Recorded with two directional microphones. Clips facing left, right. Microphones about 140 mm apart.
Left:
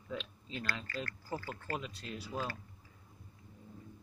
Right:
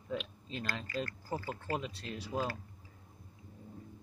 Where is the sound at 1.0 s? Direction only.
20° right (ahead or behind).